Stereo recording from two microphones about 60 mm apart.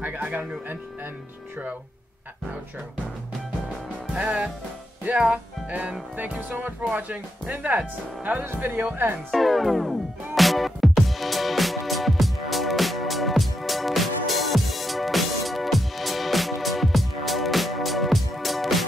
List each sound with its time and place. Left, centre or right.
0.0 s speech: right
4.2 s speech: right
5.0 s music: right
6.1 s speech: right
9.3 s music: centre